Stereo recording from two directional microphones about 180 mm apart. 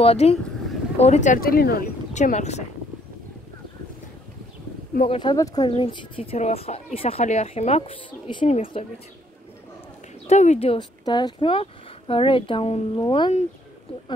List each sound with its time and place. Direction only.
0.0 s speech: 35° left (ahead or behind); by 1.9 s 55° left (ahead or behind)
2.1 s speech: 40° left (ahead or behind)
5.0 s speech: 30° left (ahead or behind)
5.3 s speech: 20° left (ahead or behind)
10.2 s speech: 40° left (ahead or behind)